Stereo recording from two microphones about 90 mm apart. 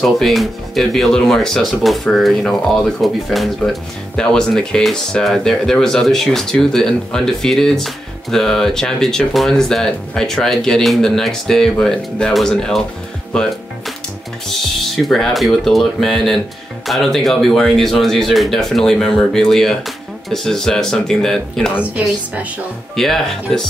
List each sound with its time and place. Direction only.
0.0 s speech: centre (ahead or behind)
13.3 s music: 5° left (ahead or behind)
15.0 s speech: 5° left (ahead or behind)
21.7 s a woman's voice: 15° right (ahead or behind)
22.9 s speech: 5° left (ahead or behind)